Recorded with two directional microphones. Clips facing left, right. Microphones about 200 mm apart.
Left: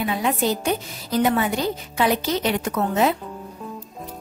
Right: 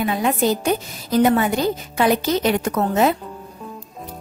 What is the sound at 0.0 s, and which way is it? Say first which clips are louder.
A woman's voice: right 3 dB; 50° right (ahead or behind).